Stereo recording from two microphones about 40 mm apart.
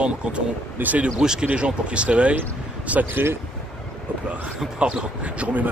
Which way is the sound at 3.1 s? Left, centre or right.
Right.